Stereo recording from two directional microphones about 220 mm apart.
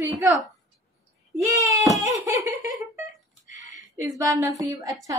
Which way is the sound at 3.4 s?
35° left (ahead or behind).